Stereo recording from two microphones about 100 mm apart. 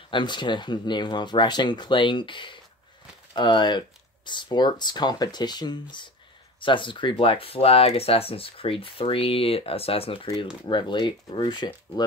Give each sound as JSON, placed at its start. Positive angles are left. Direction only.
{"t": 0.1, "sound": "speech", "side_deg": 50}
{"t": 10.7, "sound": "speech", "side_deg": 50}